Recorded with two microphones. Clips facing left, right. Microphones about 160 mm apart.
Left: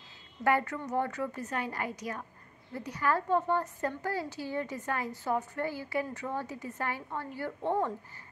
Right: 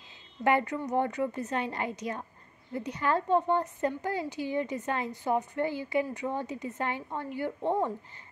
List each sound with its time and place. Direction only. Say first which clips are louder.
0.4 s a woman's voice: right 2 dB; 20° right (ahead or behind)